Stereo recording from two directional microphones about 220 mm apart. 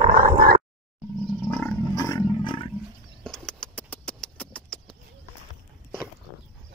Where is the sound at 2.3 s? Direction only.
25° left (ahead or behind).